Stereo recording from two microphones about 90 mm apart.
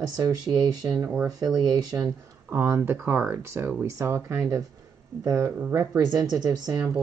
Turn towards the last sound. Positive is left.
turn(degrees=-45)  # may be behind; listen again after turning